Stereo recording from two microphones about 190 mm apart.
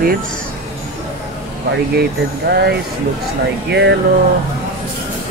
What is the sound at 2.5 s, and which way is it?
Speech, 60° right (ahead or behind).